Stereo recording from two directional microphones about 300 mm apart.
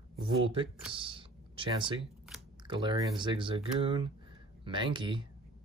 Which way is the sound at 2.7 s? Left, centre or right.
Centre.